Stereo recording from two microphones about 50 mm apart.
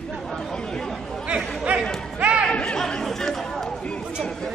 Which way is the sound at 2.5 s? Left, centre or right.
Centre.